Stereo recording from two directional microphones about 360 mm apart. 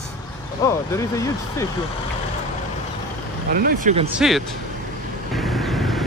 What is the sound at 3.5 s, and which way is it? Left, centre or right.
Speech, right.